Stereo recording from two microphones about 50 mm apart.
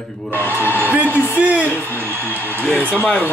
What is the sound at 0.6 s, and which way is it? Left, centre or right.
Speech, left.